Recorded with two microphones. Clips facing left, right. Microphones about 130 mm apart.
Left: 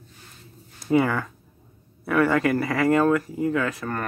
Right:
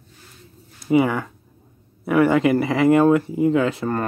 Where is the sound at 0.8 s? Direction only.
10° right (ahead or behind).